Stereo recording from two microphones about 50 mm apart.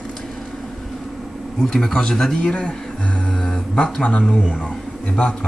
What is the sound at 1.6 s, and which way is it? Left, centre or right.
Speech, centre.